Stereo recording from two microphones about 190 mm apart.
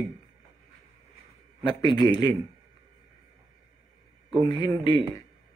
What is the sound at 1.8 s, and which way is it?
Speech, 25° left (ahead or behind).